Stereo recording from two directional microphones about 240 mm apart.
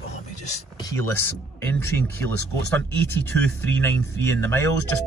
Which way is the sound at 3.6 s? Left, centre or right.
Centre.